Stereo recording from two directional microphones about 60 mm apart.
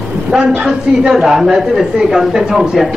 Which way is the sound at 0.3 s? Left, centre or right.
Centre.